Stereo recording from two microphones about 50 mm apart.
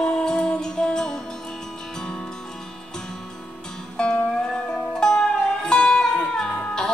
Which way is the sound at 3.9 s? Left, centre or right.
Centre.